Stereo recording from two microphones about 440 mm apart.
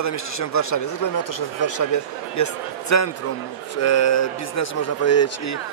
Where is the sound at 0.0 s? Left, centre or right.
Left.